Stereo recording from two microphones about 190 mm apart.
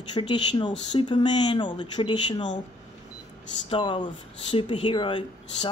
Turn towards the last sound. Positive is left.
turn(degrees=25)  # may be behind; listen again after turning